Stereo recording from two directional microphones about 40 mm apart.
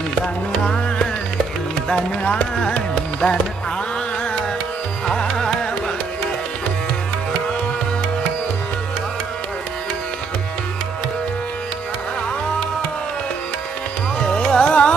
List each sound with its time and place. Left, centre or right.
2.6 s music: left
5.0 s music: centre
14.3 s carnatic music: centre
14.7 s music: left